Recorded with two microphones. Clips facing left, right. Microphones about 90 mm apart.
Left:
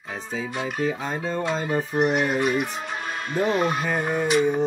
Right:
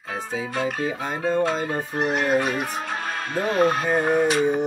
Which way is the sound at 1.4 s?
45° right (ahead or behind).